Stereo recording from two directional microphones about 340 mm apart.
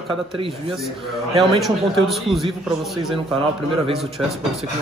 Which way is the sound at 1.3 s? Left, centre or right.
Centre.